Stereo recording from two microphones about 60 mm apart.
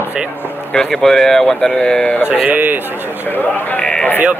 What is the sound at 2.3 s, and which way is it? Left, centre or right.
Speech, right.